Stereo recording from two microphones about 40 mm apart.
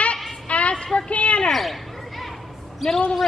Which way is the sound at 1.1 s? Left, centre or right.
Left.